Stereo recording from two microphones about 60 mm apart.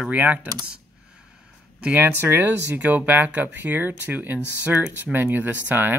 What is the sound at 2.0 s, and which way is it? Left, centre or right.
Speech, right.